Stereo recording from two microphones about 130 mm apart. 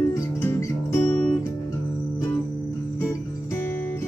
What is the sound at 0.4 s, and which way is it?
Music, 20° left (ahead or behind).